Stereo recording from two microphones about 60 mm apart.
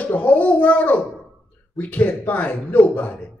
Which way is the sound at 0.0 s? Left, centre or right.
Left.